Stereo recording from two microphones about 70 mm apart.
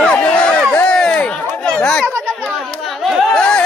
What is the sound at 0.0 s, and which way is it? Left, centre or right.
Run, centre.